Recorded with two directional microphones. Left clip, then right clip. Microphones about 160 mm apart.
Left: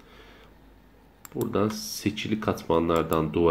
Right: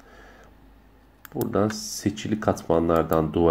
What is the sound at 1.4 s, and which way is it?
Speech, 30° right (ahead or behind).